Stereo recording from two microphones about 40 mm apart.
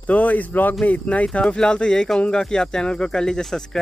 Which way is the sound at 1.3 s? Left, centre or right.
Left.